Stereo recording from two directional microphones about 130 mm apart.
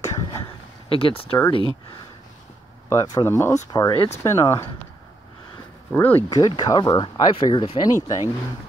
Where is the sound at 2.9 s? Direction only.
25° left (ahead or behind).